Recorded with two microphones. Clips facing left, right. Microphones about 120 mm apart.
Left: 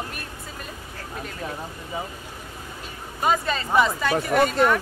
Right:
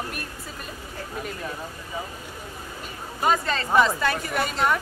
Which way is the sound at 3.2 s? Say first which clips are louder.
Even; 10° left (ahead or behind).